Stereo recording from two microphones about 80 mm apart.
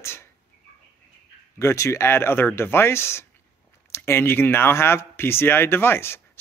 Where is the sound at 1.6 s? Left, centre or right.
Left.